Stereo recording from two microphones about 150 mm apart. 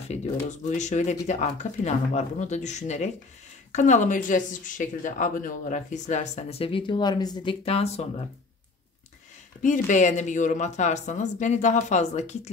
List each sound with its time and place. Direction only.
0.1 s speech: 50° left (ahead or behind); by 7.5 s 25° left (ahead or behind)
7.6 s speech: 45° left (ahead or behind)
9.8 s speech: 55° left (ahead or behind)